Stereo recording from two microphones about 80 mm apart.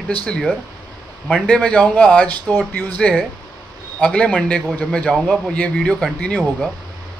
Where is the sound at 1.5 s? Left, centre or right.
Centre.